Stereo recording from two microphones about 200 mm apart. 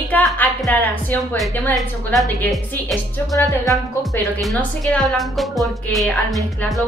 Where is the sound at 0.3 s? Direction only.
Centre (ahead or behind).